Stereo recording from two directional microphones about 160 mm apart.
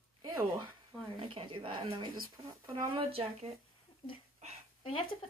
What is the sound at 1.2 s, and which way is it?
Speech, 35° right (ahead or behind).